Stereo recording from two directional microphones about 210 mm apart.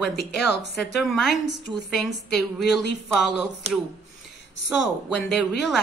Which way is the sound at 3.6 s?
30° right (ahead or behind).